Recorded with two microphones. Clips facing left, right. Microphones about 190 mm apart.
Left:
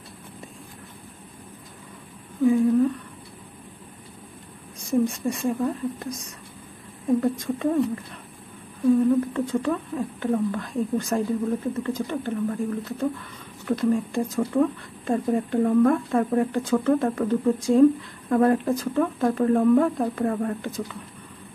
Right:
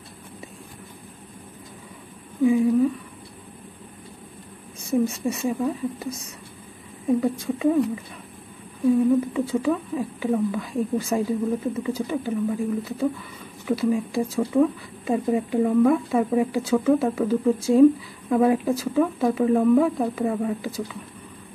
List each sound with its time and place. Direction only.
2.4 s a sound: 5° right (ahead or behind)
4.9 s speech: 5° right (ahead or behind)
9.2 s speech: 5° right (ahead or behind)